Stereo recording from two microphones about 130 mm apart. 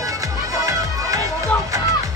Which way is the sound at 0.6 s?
25° right (ahead or behind).